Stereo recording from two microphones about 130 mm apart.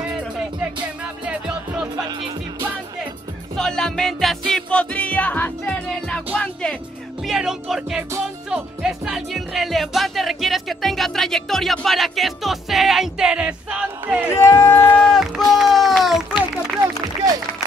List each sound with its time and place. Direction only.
3.5 s speech: 5° left (ahead or behind)
7.2 s speech: 5° right (ahead or behind)
14.3 s speech: 20° left (ahead or behind); by 16.4 s centre (ahead or behind)